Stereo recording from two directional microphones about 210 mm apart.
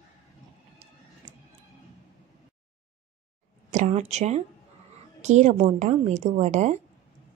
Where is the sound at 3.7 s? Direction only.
35° right (ahead or behind).